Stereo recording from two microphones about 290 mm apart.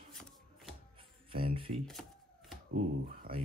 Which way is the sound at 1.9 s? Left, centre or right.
Centre.